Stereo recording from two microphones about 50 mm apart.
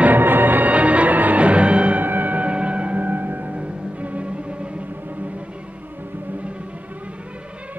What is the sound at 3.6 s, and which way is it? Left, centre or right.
Music, right.